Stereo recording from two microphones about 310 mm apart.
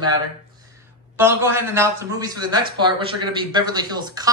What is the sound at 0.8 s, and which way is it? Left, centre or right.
A man's voice, centre.